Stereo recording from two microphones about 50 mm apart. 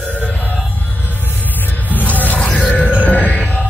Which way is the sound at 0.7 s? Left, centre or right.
Left.